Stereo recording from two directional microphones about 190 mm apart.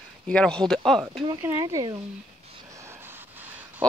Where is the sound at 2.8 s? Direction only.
10° right (ahead or behind).